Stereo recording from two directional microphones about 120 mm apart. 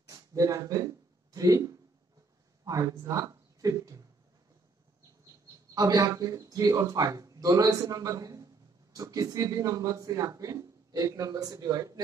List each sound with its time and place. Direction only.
0.1 s speech: 30° right (ahead or behind)
5.8 s speech: 30° right (ahead or behind)